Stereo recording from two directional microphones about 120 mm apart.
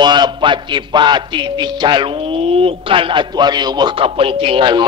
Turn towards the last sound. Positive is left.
turn(degrees=-40)  # may be behind; listen again after turning